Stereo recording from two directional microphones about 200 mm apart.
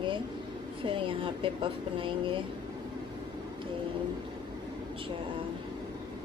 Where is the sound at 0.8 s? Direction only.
25° right (ahead or behind).